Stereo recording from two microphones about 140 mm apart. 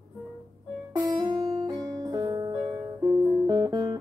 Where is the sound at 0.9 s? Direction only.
30° right (ahead or behind).